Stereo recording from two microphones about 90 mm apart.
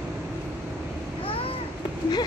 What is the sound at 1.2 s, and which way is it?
Babbling, 85° left.